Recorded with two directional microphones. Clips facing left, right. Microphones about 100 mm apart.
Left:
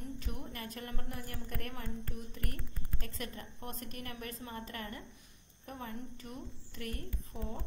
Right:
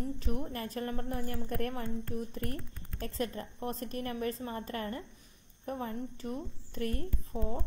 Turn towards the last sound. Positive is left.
turn(degrees=-40)  # may be behind; listen again after turning